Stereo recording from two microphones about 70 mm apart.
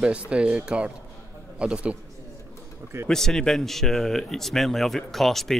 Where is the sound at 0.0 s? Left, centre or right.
Centre.